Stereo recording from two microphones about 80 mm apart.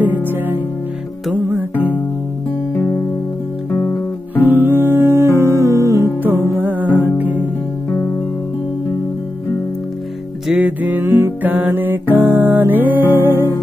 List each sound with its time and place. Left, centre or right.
0.2 s music: right
2.7 s music: left
4.4 s music: right
6.2 s music: right
10.5 s music: centre